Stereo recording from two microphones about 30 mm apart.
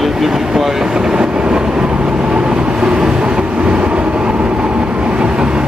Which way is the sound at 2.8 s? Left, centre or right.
Right.